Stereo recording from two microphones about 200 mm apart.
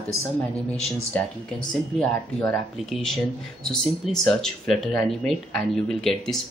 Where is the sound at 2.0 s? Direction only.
5° left (ahead or behind).